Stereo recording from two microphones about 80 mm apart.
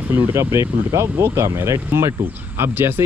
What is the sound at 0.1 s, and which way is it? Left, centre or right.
Speech, right.